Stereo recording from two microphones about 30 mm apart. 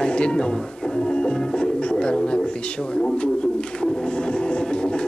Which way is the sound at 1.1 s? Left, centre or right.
Left.